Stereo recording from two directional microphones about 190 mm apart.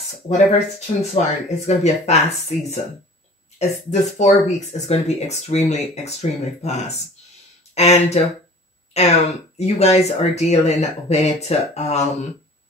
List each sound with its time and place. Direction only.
0.3 s speech: 35° left (ahead or behind)
3.5 s speech: 35° left (ahead or behind)